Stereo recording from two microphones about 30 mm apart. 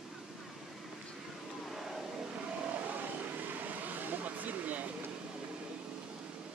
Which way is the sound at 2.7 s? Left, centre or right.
Right.